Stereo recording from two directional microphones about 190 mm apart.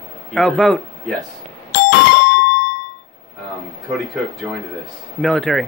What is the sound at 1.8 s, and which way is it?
Doorbell, 60° left (ahead or behind).